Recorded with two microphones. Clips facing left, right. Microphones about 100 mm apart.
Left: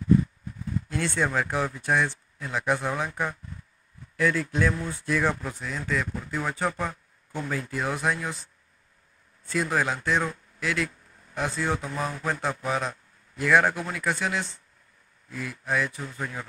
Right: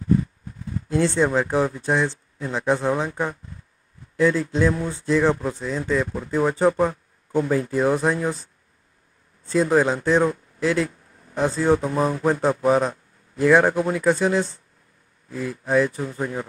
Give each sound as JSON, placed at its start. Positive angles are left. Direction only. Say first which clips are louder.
{"t": 0.8, "sound": "speech", "louder": "right 8 dB", "side_deg": -25}
{"t": 4.2, "sound": "speech", "louder": "right 5 dB", "side_deg": -25}
{"t": 9.5, "sound": "a man's voice", "louder": "right 8 dB", "side_deg": -30}